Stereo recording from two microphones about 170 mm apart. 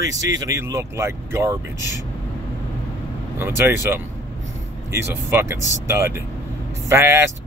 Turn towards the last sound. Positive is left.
turn(degrees=-15)  # may be behind; listen again after turning